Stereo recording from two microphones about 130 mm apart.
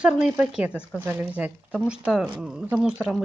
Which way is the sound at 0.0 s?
5° right (ahead or behind).